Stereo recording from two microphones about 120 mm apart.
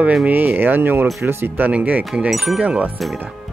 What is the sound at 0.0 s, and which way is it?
Speech, 10° right (ahead or behind).